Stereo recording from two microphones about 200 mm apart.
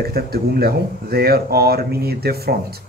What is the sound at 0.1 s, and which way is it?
Speech, 50° right (ahead or behind).